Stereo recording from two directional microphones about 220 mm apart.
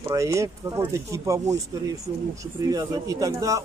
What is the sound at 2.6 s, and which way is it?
Speech, 15° right (ahead or behind).